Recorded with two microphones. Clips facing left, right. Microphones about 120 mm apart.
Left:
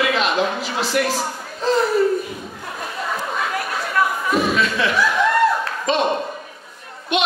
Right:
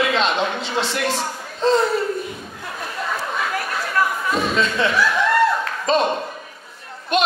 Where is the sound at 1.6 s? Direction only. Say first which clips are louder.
Right 2 dB; 30° right (ahead or behind).